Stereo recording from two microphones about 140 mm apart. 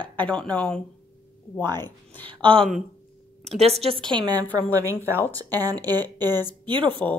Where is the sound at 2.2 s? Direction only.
40° right (ahead or behind).